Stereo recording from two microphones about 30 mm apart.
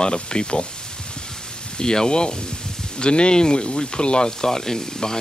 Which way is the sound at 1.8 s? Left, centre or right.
Left.